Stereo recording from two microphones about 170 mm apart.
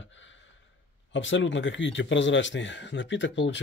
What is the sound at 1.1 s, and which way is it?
Speech, 90° left.